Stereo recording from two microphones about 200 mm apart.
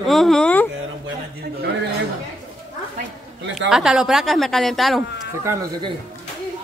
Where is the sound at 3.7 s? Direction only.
5° right (ahead or behind).